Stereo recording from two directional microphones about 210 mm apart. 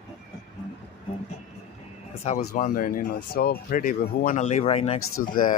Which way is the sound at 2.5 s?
40° left (ahead or behind).